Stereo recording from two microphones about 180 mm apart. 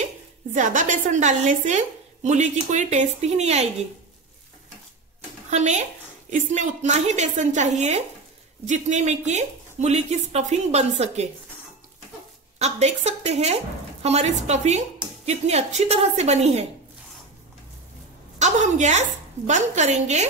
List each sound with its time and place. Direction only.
0.0 s speech: 45° right (ahead or behind)
5.5 s speech: 40° right (ahead or behind)
12.5 s speech: 35° right (ahead or behind)
18.4 s speech: 40° right (ahead or behind)